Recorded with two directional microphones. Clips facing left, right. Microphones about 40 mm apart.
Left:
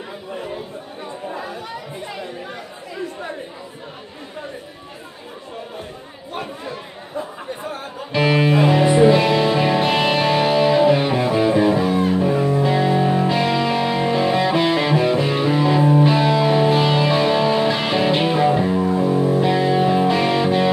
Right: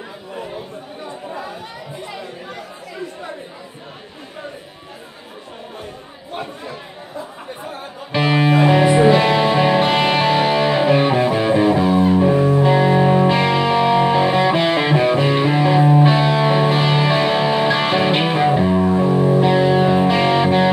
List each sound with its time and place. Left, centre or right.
8.1 s music: right
16.1 s music: right